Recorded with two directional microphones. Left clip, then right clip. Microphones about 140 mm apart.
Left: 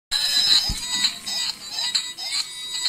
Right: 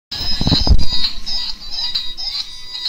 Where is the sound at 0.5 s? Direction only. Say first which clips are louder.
Right 1 dB; centre (ahead or behind).